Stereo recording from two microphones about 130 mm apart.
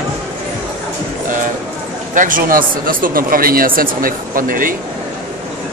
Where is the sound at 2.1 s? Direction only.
90° right.